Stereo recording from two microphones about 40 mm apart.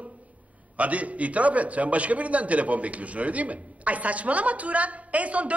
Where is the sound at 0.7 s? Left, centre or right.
Right.